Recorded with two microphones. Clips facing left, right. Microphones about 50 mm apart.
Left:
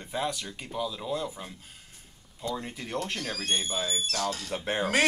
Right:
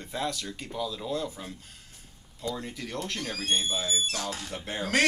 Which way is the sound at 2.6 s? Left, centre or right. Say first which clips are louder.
Left 1 dB; left.